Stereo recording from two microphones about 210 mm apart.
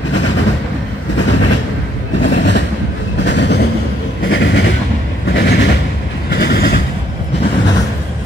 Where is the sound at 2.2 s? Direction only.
60° left (ahead or behind).